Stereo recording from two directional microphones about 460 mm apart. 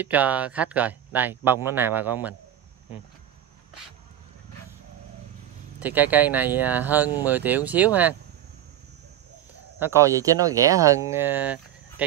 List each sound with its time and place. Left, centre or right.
0.0 s speech: centre
5.8 s speech: centre
9.8 s speech: centre